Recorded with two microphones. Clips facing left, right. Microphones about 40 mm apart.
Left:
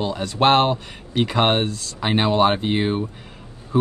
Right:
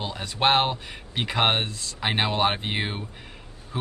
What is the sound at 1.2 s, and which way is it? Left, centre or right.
Speech, centre.